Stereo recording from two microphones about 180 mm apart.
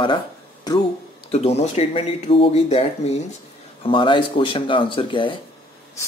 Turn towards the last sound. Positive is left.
turn(degrees=30)  # may be behind; listen again after turning